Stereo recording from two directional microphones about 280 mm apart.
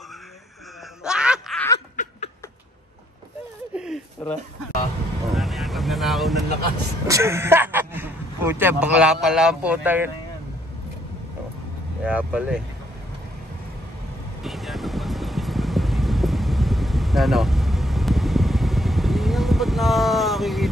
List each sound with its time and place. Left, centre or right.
1.0 s snicker: centre
2.0 s a sound: left
3.7 s a sound: centre
4.2 s speech: centre
5.3 s vehicle: centre
7.1 s speech: centre
12.0 s speech: centre
14.4 s vehicle: centre